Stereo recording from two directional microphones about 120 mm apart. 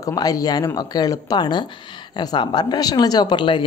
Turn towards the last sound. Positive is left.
turn(degrees=45)  # may be behind; listen again after turning